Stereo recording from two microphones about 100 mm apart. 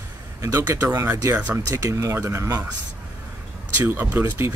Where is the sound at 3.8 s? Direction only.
15° right (ahead or behind).